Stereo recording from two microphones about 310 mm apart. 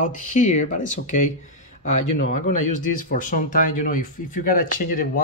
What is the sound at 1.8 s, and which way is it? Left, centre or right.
Speech, left.